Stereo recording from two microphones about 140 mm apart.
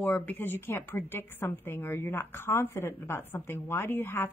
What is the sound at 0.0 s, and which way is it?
A woman's voice, 10° left (ahead or behind).